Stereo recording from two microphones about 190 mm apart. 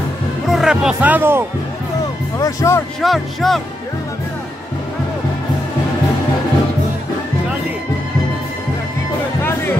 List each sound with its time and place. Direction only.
0.5 s speech: 5° right (ahead or behind)
2.3 s speech: 15° left (ahead or behind)
3.0 s speech: centre (ahead or behind)
9.4 s music: 10° left (ahead or behind)